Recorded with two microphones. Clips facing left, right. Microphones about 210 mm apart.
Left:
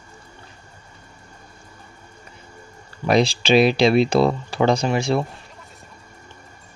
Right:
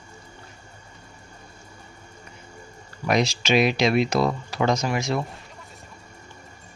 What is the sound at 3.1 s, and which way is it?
Speech, 30° left (ahead or behind).